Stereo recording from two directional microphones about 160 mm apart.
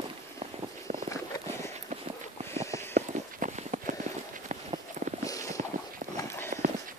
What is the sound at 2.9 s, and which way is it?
Walk, 55° right (ahead or behind).